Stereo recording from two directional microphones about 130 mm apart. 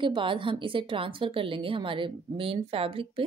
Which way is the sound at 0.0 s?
40° right (ahead or behind).